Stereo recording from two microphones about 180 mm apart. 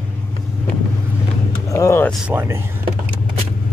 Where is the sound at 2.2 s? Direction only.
15° right (ahead or behind).